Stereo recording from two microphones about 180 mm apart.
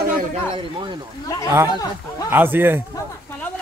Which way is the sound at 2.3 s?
10° right (ahead or behind).